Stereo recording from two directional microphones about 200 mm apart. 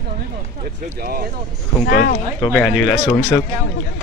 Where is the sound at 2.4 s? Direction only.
Centre (ahead or behind).